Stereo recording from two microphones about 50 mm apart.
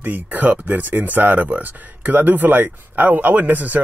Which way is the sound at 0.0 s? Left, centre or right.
Right.